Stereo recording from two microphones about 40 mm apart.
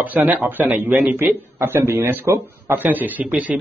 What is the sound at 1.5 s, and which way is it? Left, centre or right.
Speech, right.